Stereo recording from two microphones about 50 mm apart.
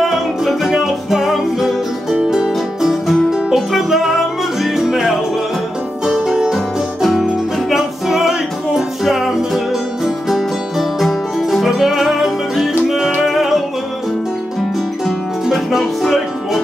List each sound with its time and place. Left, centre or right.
0.1 s music: centre
6.5 s music: centre
15.5 s music: centre